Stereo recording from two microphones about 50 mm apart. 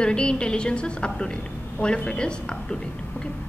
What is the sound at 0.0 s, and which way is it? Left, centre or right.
A woman's voice, centre.